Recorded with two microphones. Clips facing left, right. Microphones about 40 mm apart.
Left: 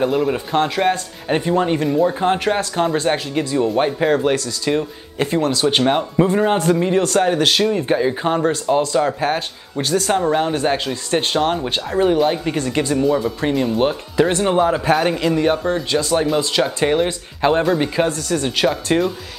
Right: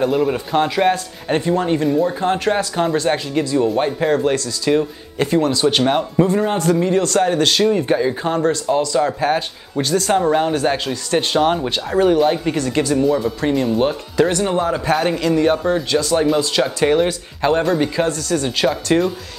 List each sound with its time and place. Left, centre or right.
0.0 s speech: centre
1.4 s speech: centre
2.1 s speech: centre
6.2 s speech: centre
11.4 s speech: centre
12.5 s speech: centre
12.9 s speech: centre; by 14.6 s left
14.6 s speech: centre
18.6 s speech: centre